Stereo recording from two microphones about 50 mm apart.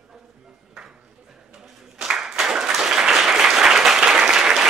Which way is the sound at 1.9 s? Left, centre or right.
Centre.